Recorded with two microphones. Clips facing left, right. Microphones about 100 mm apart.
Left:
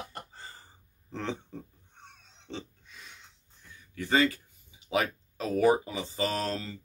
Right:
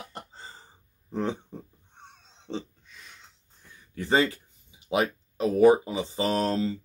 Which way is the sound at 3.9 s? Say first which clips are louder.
Right 2 dB; 30° right (ahead or behind).